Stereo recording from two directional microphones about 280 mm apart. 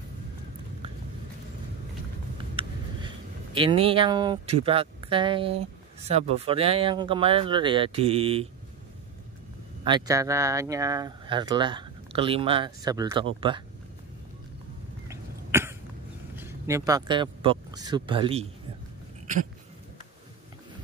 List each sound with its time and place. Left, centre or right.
2.3 s vehicle: centre
3.5 s speech: centre
9.8 s speech: centre
15.0 s cough: centre
16.3 s speech: centre